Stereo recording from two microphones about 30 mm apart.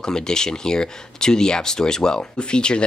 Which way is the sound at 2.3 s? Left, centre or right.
Left.